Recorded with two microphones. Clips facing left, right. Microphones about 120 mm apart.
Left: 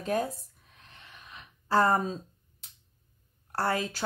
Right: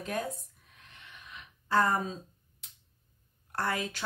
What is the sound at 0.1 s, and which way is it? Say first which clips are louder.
Speech: left 5 dB; 35° left (ahead or behind).